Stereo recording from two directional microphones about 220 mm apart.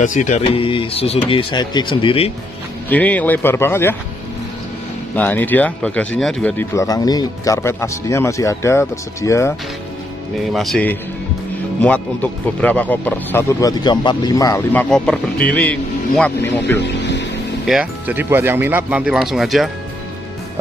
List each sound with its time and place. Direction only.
0.0 s speech: 35° left (ahead or behind)
2.9 s speech: 5° left (ahead or behind)
5.1 s speech: 10° left (ahead or behind)
10.5 s speech: centre (ahead or behind)
16.8 s vehicle: 50° left (ahead or behind)
17.6 s speech: 5° right (ahead or behind)